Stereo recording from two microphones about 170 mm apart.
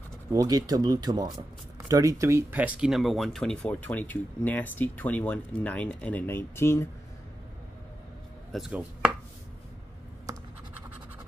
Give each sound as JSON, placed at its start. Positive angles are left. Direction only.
{"t": 0.3, "sound": "speech", "side_deg": -20}
{"t": 8.5, "sound": "chopping", "side_deg": 0}